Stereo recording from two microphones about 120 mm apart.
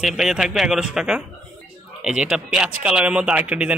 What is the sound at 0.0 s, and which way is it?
A man's voice, 5° right (ahead or behind).